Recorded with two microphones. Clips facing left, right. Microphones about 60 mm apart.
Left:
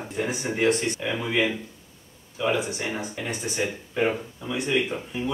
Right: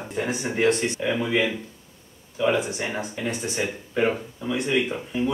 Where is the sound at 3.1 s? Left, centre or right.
Centre.